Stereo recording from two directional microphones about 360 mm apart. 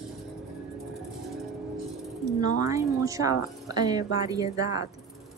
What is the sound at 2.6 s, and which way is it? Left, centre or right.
A woman's voice, centre.